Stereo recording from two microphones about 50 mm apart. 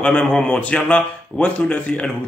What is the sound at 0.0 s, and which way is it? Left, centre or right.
Speech, centre.